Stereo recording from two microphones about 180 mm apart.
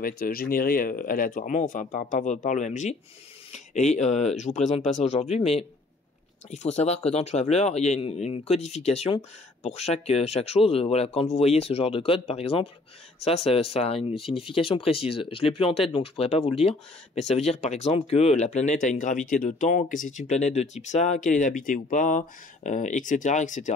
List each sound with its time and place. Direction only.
0.0 s speech: 55° left (ahead or behind)